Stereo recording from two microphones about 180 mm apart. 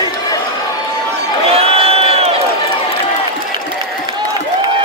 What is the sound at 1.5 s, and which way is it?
Crowd, 30° right (ahead or behind).